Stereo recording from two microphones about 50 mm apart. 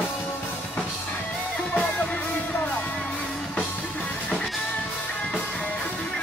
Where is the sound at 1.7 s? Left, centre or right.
Left.